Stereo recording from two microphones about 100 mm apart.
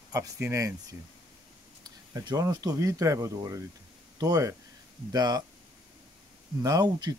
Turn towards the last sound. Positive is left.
turn(degrees=-40)  # may be behind; listen again after turning